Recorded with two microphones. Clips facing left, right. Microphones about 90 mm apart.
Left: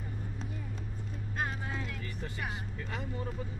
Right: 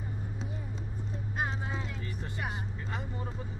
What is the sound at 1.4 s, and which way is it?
Vehicle, 20° right (ahead or behind).